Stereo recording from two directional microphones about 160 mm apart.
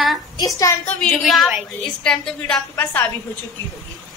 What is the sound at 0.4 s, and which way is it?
Speech, 20° left (ahead or behind).